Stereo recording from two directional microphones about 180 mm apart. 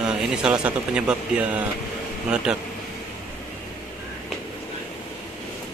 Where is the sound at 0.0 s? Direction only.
5° right (ahead or behind).